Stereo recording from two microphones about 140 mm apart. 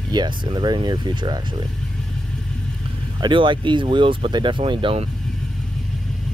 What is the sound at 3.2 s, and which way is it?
Speech, 35° right (ahead or behind).